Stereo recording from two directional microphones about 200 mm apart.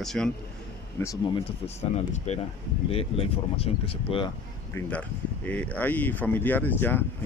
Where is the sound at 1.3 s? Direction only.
35° left (ahead or behind).